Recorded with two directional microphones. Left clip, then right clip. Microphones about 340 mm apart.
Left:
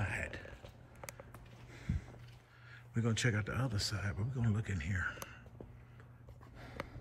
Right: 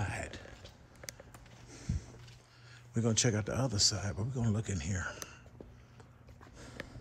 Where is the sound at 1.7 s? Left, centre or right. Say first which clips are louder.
Right 1 dB; centre.